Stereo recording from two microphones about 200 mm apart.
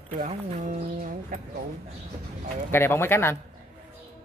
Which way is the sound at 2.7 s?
10° left (ahead or behind).